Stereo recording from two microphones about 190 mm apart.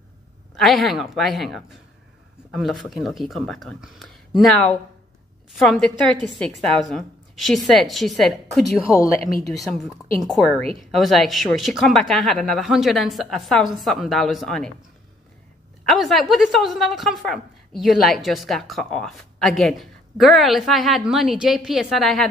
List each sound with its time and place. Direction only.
0.6 s a woman's voice: centre (ahead or behind)
8.9 s a woman's voice: 15° left (ahead or behind)
9.5 s a woman's voice: centre (ahead or behind)
15.8 s a woman's voice: centre (ahead or behind)